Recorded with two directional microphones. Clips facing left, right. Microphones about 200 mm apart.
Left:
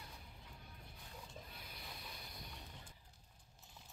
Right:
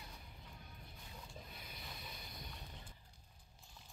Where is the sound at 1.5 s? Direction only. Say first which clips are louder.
Right 1 dB; 10° left (ahead or behind).